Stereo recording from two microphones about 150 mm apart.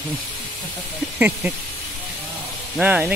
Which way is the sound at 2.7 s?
10° right (ahead or behind).